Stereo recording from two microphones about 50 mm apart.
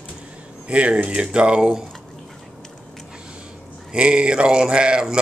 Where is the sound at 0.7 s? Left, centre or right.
Right.